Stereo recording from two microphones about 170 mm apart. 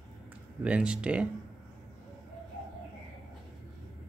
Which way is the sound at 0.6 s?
5° right (ahead or behind).